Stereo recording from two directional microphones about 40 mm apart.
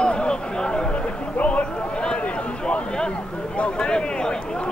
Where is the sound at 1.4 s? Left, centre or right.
Left.